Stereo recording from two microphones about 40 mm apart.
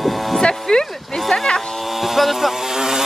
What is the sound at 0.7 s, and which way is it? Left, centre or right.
Speech, centre.